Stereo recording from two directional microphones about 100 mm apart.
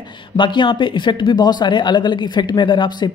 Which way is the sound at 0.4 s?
55° left (ahead or behind).